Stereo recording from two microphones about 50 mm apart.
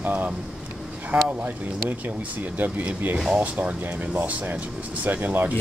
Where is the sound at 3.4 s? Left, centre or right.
Right.